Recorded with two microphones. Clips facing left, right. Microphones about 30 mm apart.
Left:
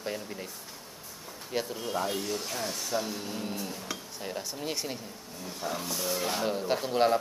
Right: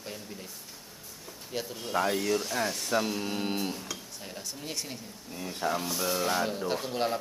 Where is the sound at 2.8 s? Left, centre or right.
Right.